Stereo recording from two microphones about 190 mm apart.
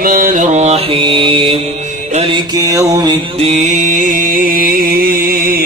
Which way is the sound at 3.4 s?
40° right (ahead or behind).